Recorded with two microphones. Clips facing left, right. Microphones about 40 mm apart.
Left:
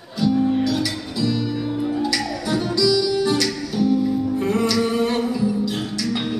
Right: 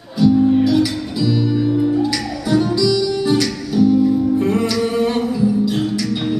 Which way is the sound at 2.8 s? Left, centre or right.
Centre.